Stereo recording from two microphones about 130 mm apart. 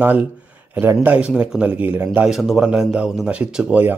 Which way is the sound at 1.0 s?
10° right (ahead or behind).